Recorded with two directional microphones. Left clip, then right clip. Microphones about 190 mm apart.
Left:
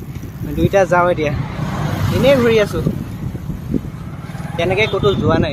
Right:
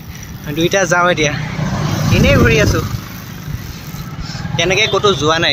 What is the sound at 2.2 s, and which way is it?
Speech, 15° left (ahead or behind).